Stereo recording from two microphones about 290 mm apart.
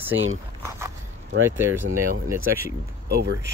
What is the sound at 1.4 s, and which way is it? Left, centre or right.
Speech, centre.